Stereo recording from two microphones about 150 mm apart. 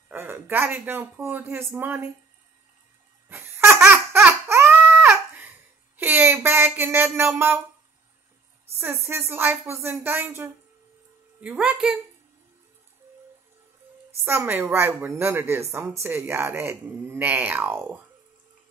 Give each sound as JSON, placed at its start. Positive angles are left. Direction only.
{"t": 0.1, "sound": "speech", "side_deg": -15}
{"t": 3.3, "sound": "baby laughter", "side_deg": -15}
{"t": 5.9, "sound": "speech", "side_deg": -15}
{"t": 8.7, "sound": "speech", "side_deg": -15}
{"t": 14.2, "sound": "speech", "side_deg": -15}